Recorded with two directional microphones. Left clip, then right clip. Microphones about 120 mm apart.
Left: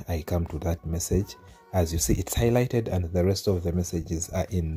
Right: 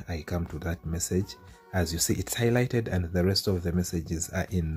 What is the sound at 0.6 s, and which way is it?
Speech, 30° left (ahead or behind).